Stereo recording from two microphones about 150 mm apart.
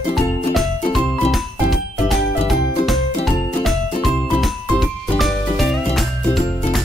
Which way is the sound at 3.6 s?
Centre (ahead or behind).